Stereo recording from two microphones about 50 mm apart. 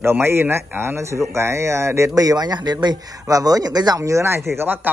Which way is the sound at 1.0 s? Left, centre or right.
Right.